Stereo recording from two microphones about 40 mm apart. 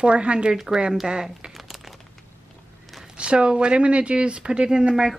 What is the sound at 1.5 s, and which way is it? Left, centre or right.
Crumpling, centre.